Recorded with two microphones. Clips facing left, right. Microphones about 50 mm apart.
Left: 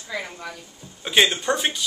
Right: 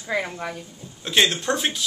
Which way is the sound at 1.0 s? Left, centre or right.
Centre.